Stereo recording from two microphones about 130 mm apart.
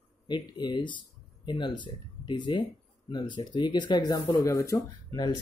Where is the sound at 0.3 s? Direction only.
35° left (ahead or behind).